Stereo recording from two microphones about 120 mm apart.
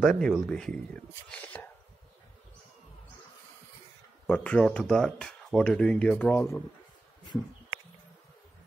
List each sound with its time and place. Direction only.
0.0 s speech: 5° left (ahead or behind)
1.3 s whispering: 10° left (ahead or behind)
4.3 s speech: 10° left (ahead or behind)
6.3 s speech: 20° left (ahead or behind)